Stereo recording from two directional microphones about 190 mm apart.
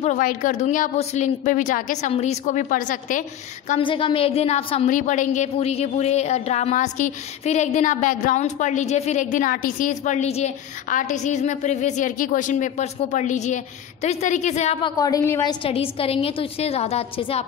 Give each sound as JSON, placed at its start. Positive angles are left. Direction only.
{"t": 0.0, "sound": "a woman's voice", "side_deg": 40}
{"t": 3.8, "sound": "a woman's voice", "side_deg": 25}
{"t": 15.0, "sound": "a woman's voice", "side_deg": 20}
{"t": 15.6, "sound": "a woman's voice", "side_deg": 30}